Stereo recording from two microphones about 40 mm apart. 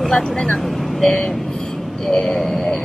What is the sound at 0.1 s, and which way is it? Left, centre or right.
Speech, centre.